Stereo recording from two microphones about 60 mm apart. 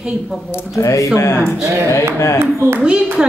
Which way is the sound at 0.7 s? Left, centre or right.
Left.